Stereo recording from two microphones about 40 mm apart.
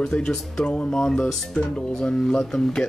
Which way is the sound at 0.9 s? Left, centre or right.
Centre.